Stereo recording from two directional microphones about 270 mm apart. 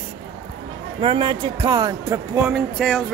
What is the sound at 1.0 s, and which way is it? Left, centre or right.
Speech, centre.